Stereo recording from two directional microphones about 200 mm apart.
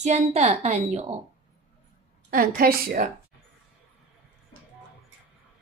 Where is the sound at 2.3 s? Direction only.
45° right (ahead or behind).